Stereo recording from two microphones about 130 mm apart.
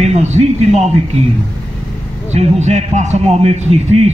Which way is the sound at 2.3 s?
60° right (ahead or behind).